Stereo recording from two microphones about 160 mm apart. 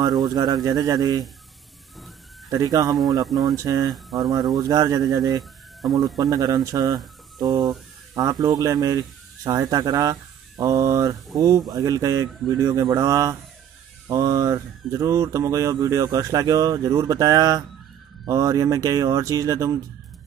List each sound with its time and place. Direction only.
0.3 s speech: 25° right (ahead or behind)
2.5 s speech: 25° right (ahead or behind)